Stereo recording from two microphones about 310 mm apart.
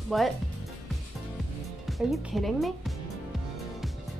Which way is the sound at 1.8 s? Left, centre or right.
Centre.